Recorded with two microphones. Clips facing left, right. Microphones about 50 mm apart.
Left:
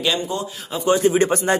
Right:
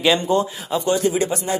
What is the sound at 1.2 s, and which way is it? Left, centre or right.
Speech, left.